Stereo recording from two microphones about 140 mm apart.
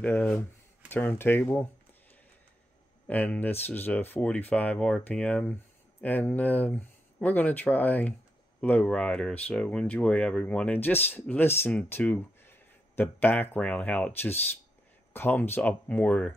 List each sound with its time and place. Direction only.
0.0 s speech: 10° left (ahead or behind)
3.1 s speech: 10° left (ahead or behind)